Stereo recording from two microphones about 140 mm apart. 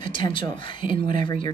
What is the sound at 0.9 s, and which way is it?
Speech, 70° right (ahead or behind).